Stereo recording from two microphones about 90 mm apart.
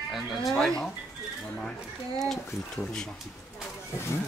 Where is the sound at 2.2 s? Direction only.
5° left (ahead or behind).